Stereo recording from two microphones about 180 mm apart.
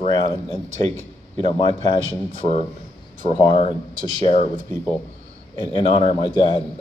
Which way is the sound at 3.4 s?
25° left (ahead or behind).